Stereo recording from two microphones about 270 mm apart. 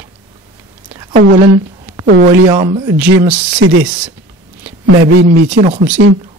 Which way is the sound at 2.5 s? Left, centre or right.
Centre.